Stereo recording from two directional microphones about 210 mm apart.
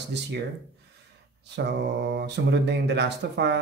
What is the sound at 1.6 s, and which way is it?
Speech, 55° right (ahead or behind).